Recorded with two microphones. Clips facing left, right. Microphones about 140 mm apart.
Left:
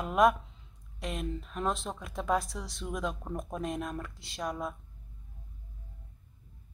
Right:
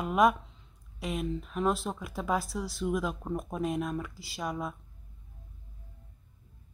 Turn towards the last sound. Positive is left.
turn(degrees=0)  # may be behind; listen again after turning